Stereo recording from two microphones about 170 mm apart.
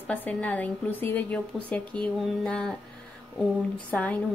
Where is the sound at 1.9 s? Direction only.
5° left (ahead or behind).